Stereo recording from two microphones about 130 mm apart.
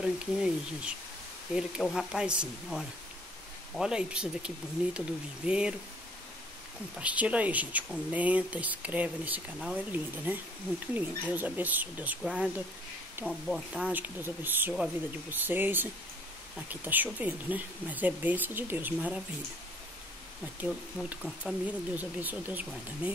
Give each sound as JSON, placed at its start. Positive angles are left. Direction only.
{"t": 0.0, "sound": "speech", "side_deg": -5}
{"t": 7.0, "sound": "speech", "side_deg": -10}
{"t": 20.6, "sound": "speech", "side_deg": -5}